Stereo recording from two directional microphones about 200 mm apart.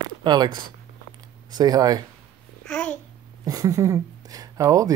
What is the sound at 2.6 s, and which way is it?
Speech, 5° left (ahead or behind).